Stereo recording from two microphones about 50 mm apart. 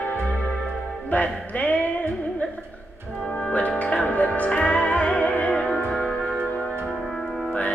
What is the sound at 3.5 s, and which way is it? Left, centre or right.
Music, left.